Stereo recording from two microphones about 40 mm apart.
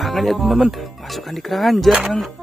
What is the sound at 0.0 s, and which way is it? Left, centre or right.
Speech, centre.